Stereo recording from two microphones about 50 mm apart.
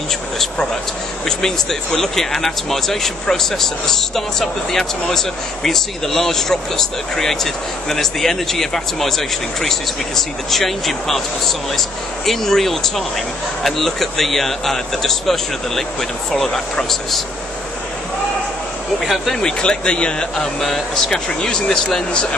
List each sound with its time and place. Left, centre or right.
1.2 s speech: centre
12.3 s a man's voice: centre
19.4 s speech: centre